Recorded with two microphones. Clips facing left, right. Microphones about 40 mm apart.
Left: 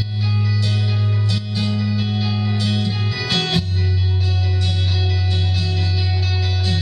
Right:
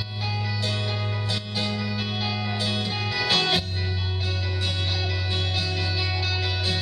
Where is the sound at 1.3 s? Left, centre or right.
Centre.